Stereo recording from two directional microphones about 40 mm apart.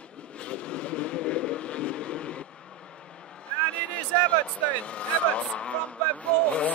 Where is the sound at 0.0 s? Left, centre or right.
Left.